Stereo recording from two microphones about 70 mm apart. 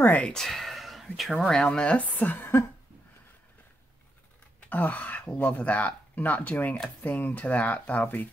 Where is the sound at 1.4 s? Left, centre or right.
Centre; by 2.6 s left.